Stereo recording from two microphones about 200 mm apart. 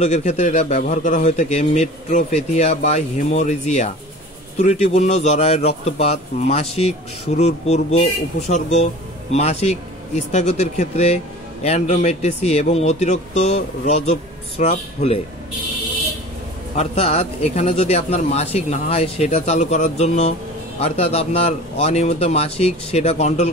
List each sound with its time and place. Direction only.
0.0 s a man's voice: 35° left (ahead or behind)
16.7 s a man's voice: 35° left (ahead or behind)